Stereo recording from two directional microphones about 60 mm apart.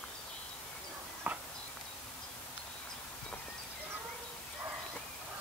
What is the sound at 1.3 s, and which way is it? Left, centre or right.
Clip-clop, right.